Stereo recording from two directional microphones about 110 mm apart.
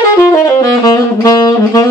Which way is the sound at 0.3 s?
35° left (ahead or behind).